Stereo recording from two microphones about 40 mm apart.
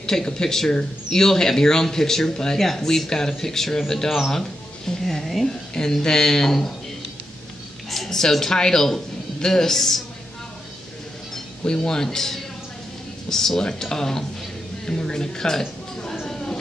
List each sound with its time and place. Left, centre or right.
0.0 s speech: centre
5.0 s a woman's voice: centre
5.8 s speech: centre
7.9 s speech: centre
11.3 s speech: centre
16.3 s a sound: centre